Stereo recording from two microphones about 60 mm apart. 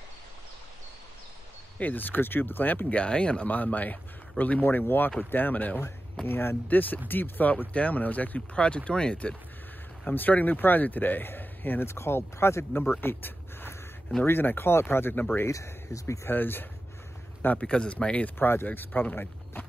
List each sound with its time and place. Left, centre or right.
1.8 s speech: left
10.0 s speech: left
13.0 s a sound: left
14.2 s speech: left
15.5 s speech: left
16.3 s speech: left
17.6 s speech: centre
18.4 s speech: left